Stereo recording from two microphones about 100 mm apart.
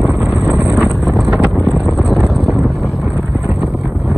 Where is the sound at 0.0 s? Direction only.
Centre (ahead or behind).